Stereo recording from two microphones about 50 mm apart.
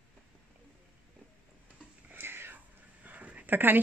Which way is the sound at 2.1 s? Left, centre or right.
Right.